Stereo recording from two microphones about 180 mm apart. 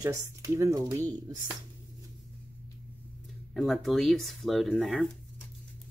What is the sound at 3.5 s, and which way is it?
Speech, centre (ahead or behind).